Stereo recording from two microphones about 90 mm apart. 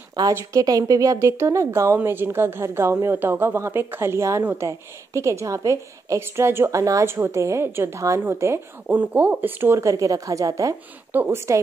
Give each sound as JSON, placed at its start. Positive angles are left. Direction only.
{"t": 0.3, "sound": "a woman's voice", "side_deg": -35}
{"t": 8.8, "sound": "a woman's voice", "side_deg": -20}
{"t": 9.8, "sound": "a woman's voice", "side_deg": -40}